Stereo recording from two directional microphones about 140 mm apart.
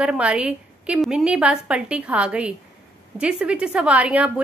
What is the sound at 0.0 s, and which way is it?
A woman's voice, 5° right (ahead or behind).